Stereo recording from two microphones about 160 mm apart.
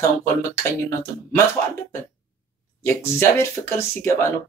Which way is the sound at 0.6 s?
15° left (ahead or behind).